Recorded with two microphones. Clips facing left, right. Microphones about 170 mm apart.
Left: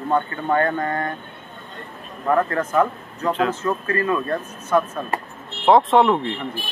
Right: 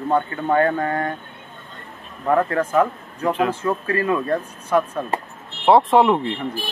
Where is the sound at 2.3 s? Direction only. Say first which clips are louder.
Right 1 dB; 10° right (ahead or behind).